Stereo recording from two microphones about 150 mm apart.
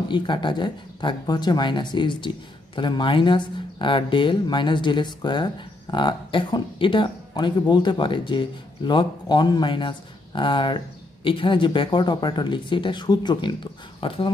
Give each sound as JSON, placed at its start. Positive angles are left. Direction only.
{"t": 0.1, "sound": "speech", "side_deg": 30}